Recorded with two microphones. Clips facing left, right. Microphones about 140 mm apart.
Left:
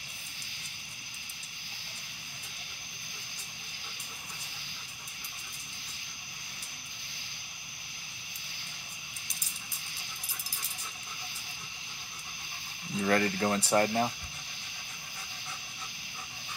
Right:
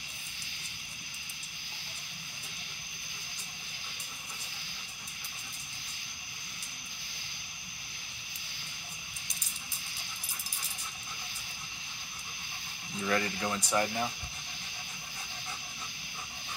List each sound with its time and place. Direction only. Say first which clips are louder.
13.0 s speech: left 4 dB; 40° left (ahead or behind)